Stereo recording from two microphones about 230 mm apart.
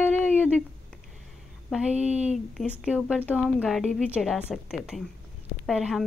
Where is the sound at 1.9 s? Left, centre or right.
Right.